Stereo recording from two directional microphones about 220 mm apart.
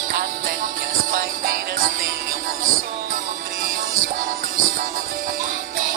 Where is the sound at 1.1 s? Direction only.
40° right (ahead or behind).